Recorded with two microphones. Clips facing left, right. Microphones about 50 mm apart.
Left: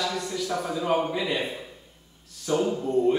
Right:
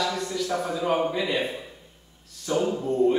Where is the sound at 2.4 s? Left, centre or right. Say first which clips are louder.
Even; centre.